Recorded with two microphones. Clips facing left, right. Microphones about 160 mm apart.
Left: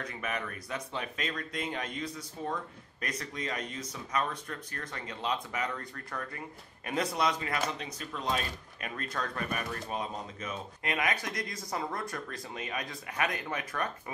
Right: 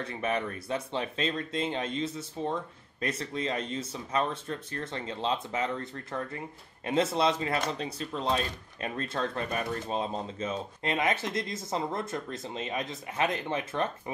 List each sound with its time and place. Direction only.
0.0 s speech: 30° right (ahead or behind)